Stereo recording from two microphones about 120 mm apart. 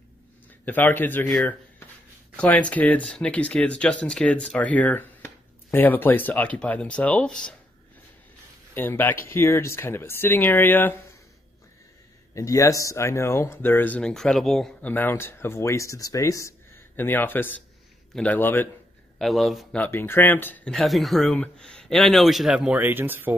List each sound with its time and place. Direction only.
0.7 s speech: 15° left (ahead or behind)
2.3 s speech: 10° left (ahead or behind)
8.7 s speech: 15° left (ahead or behind)
12.4 s speech: 25° left (ahead or behind); by 14.7 s centre (ahead or behind)
14.8 s speech: 15° left (ahead or behind)
19.1 s speech: centre (ahead or behind)
19.8 s speech: 20° left (ahead or behind)
20.7 s speech: centre (ahead or behind); by 23.3 s 15° right (ahead or behind)